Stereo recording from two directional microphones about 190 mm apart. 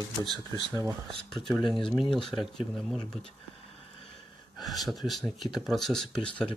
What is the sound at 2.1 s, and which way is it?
Speech, centre (ahead or behind).